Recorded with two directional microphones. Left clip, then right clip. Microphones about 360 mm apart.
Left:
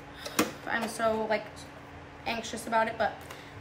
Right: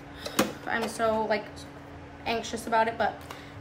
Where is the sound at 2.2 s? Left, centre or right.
Centre.